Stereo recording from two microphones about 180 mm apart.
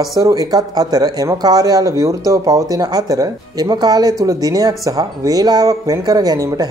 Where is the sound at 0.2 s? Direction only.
20° right (ahead or behind).